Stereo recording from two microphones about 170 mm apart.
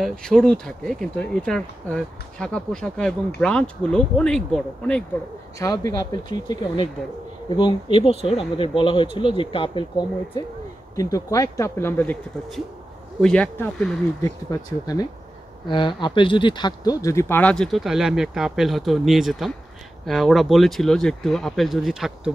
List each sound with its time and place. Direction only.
0.0 s speech: 5° left (ahead or behind)
5.6 s speech: 20° left (ahead or behind)
13.2 s speech: 5° left (ahead or behind)
14.2 s speech: 20° left (ahead or behind); by 22.3 s centre (ahead or behind)